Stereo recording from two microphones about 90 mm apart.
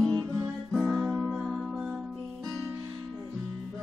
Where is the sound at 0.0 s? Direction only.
40° right (ahead or behind).